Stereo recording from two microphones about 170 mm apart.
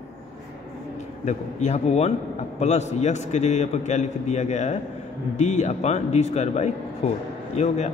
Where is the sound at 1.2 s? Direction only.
40° left (ahead or behind).